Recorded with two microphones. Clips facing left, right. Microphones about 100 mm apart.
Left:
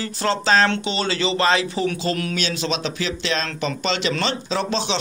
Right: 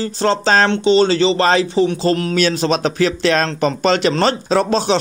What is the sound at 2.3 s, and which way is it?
Speech, 45° right (ahead or behind).